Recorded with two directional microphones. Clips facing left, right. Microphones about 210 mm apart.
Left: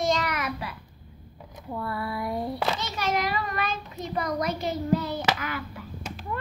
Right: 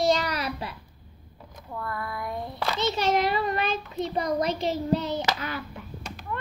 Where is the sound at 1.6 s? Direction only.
10° left (ahead or behind).